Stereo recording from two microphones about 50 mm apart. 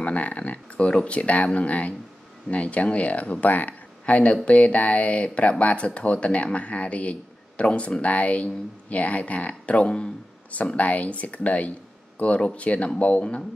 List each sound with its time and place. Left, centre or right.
0.0 s speech: left